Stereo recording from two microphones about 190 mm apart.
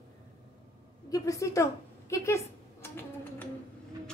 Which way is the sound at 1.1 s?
15° left (ahead or behind).